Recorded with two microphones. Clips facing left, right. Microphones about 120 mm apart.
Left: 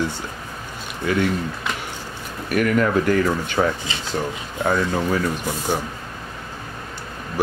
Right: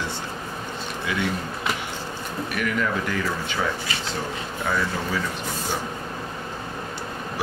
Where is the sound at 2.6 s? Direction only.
45° left (ahead or behind).